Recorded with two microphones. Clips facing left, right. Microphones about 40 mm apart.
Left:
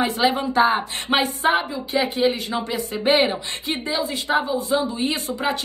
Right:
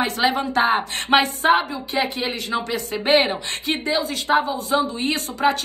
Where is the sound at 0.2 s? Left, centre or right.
Right.